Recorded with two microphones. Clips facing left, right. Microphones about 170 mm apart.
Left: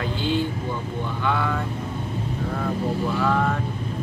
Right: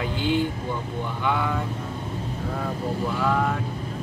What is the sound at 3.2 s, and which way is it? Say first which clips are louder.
Speech: left 1 dB; 10° right (ahead or behind).